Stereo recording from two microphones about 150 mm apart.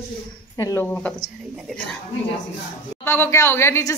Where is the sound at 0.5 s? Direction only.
20° left (ahead or behind).